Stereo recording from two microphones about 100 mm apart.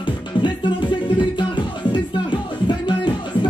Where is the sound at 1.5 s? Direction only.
50° left (ahead or behind).